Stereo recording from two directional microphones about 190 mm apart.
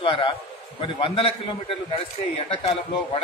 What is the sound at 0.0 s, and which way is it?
A man's voice, 25° left (ahead or behind).